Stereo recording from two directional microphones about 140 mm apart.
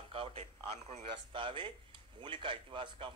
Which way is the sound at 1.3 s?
35° right (ahead or behind).